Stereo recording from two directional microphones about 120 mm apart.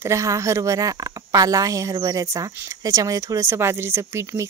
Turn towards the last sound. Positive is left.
turn(degrees=-20)  # may be behind; listen again after turning